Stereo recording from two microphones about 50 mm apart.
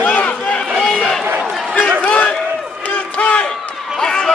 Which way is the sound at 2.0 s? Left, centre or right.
Left.